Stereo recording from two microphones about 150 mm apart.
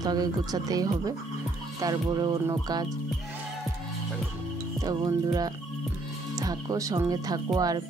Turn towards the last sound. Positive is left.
turn(degrees=-25)  # may be behind; listen again after turning